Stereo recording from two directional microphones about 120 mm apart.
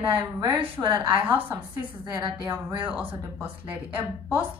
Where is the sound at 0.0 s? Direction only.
40° right (ahead or behind).